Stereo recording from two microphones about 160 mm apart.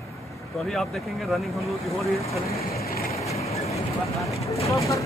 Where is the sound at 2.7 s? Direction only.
70° left (ahead or behind).